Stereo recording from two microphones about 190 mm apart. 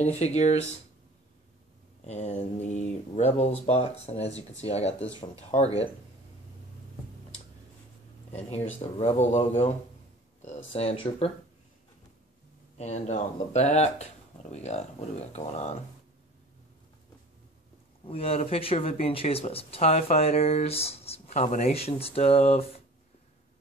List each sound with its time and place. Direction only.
0.0 s speech: 35° left (ahead or behind)
2.0 s speech: 35° left (ahead or behind)
8.9 s speech: 35° left (ahead or behind)
12.7 s speech: 35° left (ahead or behind)
18.0 s speech: 30° left (ahead or behind)